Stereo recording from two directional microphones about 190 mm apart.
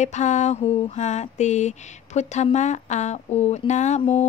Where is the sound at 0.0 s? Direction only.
40° left (ahead or behind).